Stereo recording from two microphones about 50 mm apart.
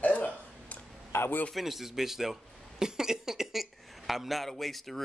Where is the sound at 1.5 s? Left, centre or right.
Centre.